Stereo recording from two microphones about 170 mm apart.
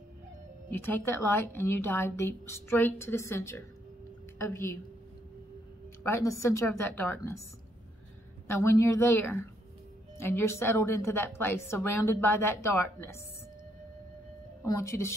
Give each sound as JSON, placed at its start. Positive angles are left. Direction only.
{"t": 0.7, "sound": "a woman's voice", "side_deg": 15}
{"t": 6.0, "sound": "a woman's voice", "side_deg": 20}
{"t": 8.5, "sound": "a woman's voice", "side_deg": 15}
{"t": 14.6, "sound": "a woman's voice", "side_deg": 15}